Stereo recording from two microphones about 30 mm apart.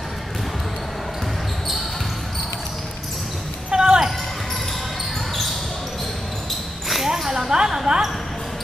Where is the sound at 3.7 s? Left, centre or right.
Right.